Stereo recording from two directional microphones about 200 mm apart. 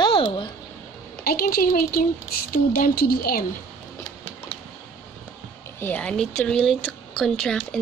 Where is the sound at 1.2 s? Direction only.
45° left (ahead or behind).